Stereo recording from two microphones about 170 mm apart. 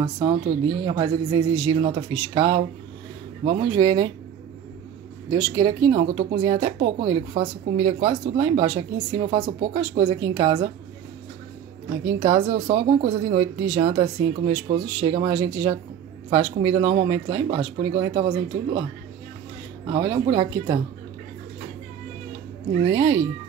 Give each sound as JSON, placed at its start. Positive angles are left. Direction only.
{"t": 0.0, "sound": "speech", "side_deg": -30}
{"t": 5.3, "sound": "speech", "side_deg": -30}
{"t": 12.2, "sound": "speech", "side_deg": -35}
{"t": 19.9, "sound": "speech", "side_deg": -25}
{"t": 22.8, "sound": "speech", "side_deg": -25}